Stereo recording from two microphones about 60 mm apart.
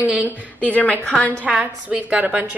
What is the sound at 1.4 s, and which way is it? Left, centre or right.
A woman's voice, right.